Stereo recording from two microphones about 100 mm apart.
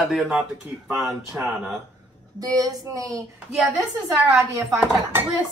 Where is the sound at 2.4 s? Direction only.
40° right (ahead or behind).